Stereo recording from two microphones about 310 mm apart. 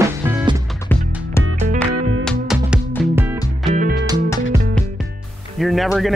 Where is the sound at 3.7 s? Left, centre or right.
Right.